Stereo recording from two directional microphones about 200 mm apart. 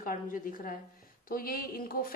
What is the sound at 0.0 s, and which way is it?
A woman's voice, 45° left (ahead or behind).